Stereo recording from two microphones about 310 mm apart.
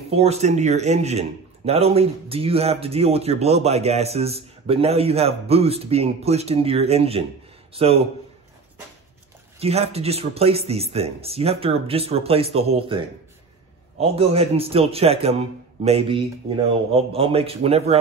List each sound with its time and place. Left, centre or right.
0.1 s a man's voice: centre
9.6 s speech: centre